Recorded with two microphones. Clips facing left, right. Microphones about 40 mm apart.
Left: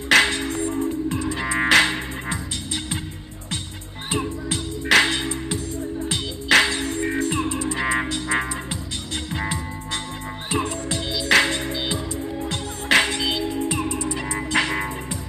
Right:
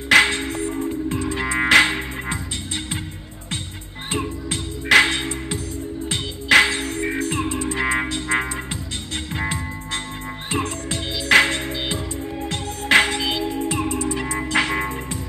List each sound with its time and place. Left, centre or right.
0.1 s music: centre
0.5 s music: right
1.3 s music: centre
4.1 s music: centre